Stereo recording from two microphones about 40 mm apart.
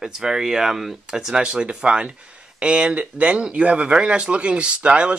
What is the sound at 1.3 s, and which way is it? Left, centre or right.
Speech, right.